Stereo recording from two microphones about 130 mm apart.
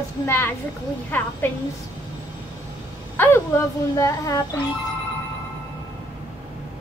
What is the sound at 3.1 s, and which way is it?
A child's voice, 15° left (ahead or behind).